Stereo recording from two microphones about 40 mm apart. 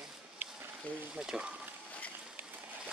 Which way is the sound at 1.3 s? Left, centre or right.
Centre.